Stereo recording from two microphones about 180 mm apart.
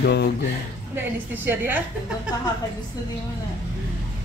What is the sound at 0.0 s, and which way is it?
Speech, 70° left (ahead or behind).